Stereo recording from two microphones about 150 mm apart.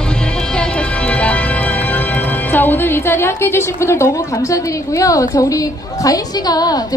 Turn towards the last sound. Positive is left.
turn(degrees=25)  # may be behind; listen again after turning